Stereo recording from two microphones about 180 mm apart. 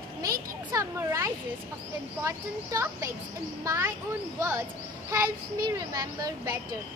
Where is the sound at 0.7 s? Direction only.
15° right (ahead or behind).